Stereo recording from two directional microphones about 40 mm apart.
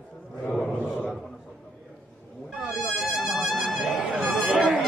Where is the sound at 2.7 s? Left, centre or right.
Centre.